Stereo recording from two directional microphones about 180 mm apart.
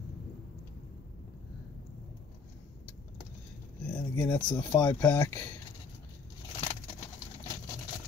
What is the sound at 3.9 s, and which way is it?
Speech, 15° left (ahead or behind).